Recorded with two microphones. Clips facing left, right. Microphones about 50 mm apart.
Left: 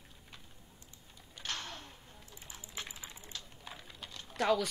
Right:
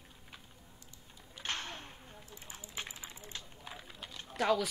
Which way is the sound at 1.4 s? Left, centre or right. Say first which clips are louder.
Right 2 dB; right.